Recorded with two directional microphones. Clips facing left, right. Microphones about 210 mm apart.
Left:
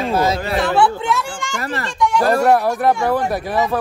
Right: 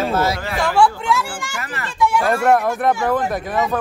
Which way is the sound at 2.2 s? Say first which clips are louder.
Left 3 dB; 35° left (ahead or behind).